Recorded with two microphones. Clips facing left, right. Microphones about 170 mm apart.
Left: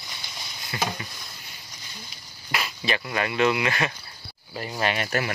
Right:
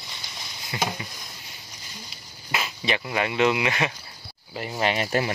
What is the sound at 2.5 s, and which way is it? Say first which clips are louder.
Speech: right 1 dB; 20° right (ahead or behind).